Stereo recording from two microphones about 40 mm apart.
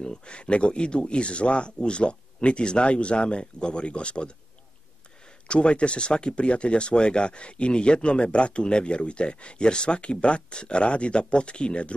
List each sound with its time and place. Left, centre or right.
0.0 s speech: left
5.5 s speech: left